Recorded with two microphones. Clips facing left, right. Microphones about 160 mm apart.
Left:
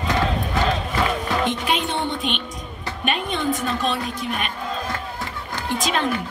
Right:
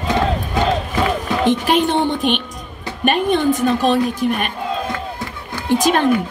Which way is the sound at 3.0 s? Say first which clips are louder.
Right 8 dB; 50° right (ahead or behind).